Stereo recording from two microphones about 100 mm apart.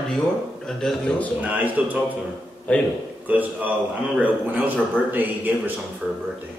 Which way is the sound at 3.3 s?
15° right (ahead or behind).